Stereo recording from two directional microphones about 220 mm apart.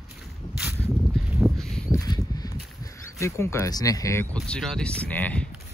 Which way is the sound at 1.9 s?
15° left (ahead or behind).